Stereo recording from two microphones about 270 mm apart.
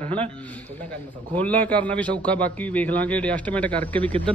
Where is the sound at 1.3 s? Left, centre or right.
Centre.